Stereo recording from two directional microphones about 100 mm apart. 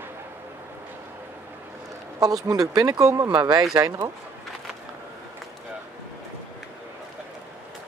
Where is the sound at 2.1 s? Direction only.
40° right (ahead or behind).